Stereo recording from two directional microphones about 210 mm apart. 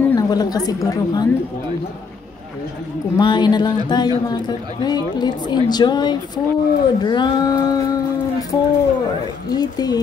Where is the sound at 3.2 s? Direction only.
20° left (ahead or behind).